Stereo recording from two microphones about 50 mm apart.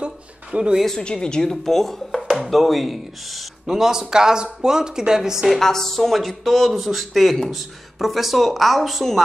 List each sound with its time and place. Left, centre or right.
0.0 s a sound: centre
0.8 s speech: centre
5.5 s speech: centre